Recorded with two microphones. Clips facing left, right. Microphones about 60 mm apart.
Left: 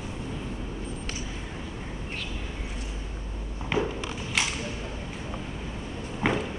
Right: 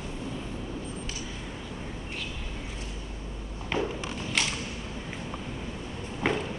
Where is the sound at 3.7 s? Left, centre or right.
Centre.